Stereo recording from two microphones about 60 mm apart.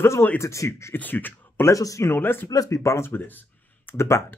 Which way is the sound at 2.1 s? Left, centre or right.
Left.